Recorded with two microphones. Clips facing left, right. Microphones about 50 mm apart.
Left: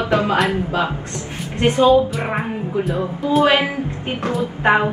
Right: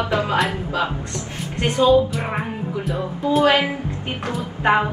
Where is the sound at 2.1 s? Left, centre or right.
Centre.